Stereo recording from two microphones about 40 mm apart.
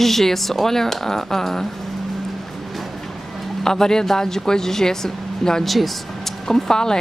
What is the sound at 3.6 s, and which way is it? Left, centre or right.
Speech, centre.